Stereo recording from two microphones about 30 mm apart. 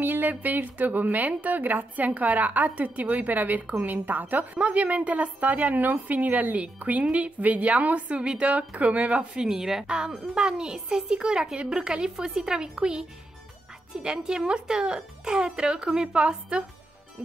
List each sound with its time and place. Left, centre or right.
0.0 s speech: right
4.7 s a woman's voice: right
6.8 s a woman's voice: right
9.4 s a woman's voice: centre
9.8 s a woman's voice: right